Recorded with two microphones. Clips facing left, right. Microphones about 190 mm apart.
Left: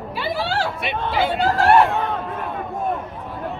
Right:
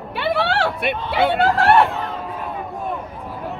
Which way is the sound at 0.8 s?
55° right (ahead or behind).